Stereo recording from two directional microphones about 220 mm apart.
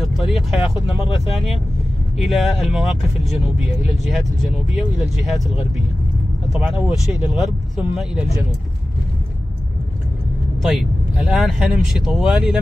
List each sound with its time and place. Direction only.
0.0 s speech: centre (ahead or behind)
10.6 s speech: centre (ahead or behind)